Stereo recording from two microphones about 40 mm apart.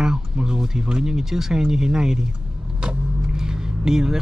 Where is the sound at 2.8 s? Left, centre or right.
Right.